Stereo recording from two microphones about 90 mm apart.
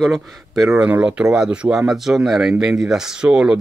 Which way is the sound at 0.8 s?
15° right (ahead or behind).